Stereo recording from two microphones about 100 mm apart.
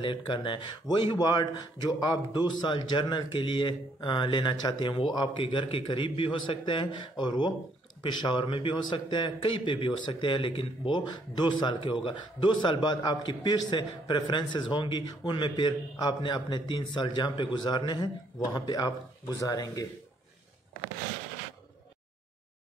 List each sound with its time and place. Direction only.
0.0 s a man's voice: 55° left (ahead or behind); by 19.9 s 40° left (ahead or behind)